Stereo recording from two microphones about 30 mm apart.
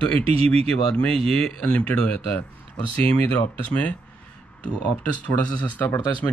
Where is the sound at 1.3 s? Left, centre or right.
Left.